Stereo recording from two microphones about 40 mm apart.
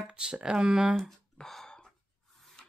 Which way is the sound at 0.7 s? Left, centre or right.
Centre.